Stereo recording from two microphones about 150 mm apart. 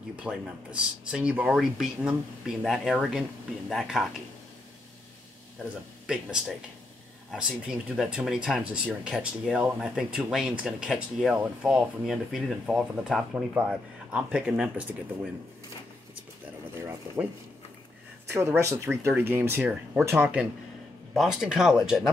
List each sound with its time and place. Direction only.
0.1 s speech: 5° right (ahead or behind)
7.2 s speech: 5° right (ahead or behind)
16.7 s speech: 20° right (ahead or behind)
18.3 s speech: 15° right (ahead or behind); by 22.1 s centre (ahead or behind)